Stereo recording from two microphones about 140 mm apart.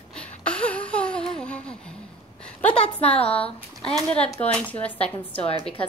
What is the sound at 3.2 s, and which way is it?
Speech, 45° left (ahead or behind).